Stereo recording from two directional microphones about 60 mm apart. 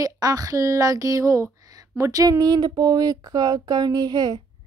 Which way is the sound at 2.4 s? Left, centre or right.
Right.